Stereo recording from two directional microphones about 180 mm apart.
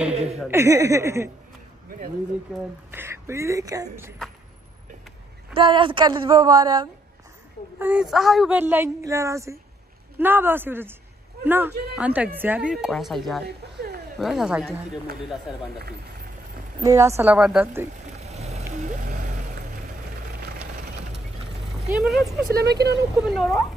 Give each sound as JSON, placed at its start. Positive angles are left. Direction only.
{"t": 0.1, "sound": "chuckle", "side_deg": -35}
{"t": 0.5, "sound": "speech", "side_deg": -15}
{"t": 2.9, "sound": "speech", "side_deg": -15}
{"t": 5.5, "sound": "a woman's voice", "side_deg": -30}
{"t": 7.8, "sound": "a woman's voice", "side_deg": -5}
{"t": 16.8, "sound": "speech", "side_deg": -15}
{"t": 18.1, "sound": "a sound", "side_deg": -35}
{"t": 18.8, "sound": "vehicle", "side_deg": -45}
{"t": 22.0, "sound": "a woman's voice", "side_deg": 0}
{"t": 22.5, "sound": "speech", "side_deg": -65}
{"t": 23.2, "sound": "a woman's voice", "side_deg": 0}